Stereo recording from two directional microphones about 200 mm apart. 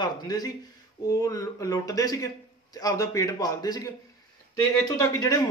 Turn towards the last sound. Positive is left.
turn(degrees=15)  # may be behind; listen again after turning